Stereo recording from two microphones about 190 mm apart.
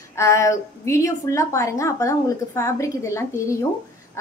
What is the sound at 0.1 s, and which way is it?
A woman's voice, 15° left (ahead or behind).